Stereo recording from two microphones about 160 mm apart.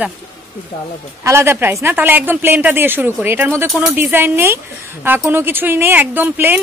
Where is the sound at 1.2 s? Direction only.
15° right (ahead or behind).